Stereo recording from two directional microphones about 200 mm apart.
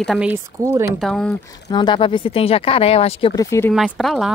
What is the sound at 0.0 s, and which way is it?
Speech, 5° right (ahead or behind).